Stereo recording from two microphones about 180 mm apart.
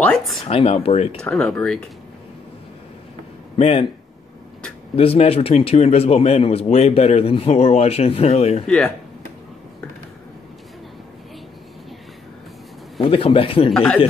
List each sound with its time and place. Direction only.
0.0 s speech: centre (ahead or behind)
0.5 s a man's voice: 35° left (ahead or behind)
1.2 s speech: 5° left (ahead or behind)
3.5 s speech: 35° left (ahead or behind)
4.9 s a man's voice: 35° left (ahead or behind)
8.6 s speech: 5° left (ahead or behind)
13.0 s speech: 30° left (ahead or behind)
13.7 s speech: 5° left (ahead or behind)